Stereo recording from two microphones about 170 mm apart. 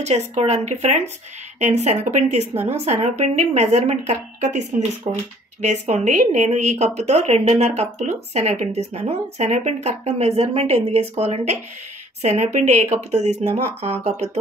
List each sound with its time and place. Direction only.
0.0 s a woman's voice: 40° right (ahead or behind)